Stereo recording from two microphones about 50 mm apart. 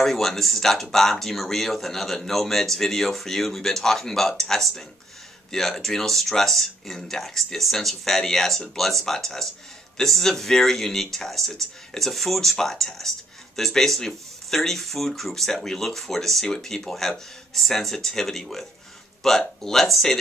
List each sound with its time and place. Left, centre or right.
0.0 s speech: centre